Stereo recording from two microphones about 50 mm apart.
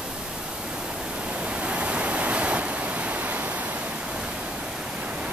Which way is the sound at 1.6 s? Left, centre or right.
Right.